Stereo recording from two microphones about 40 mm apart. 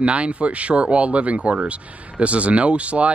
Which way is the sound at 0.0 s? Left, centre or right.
Right.